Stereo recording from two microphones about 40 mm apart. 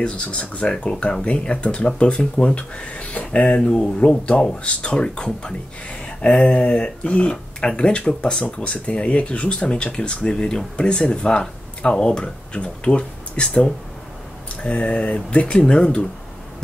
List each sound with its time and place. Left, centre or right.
0.0 s speech: left
3.6 s speech: left
6.0 s a sound: left
6.6 s speech: left